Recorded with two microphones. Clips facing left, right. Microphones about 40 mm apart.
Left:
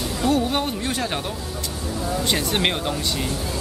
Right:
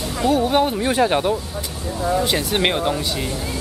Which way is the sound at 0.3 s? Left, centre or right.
Centre.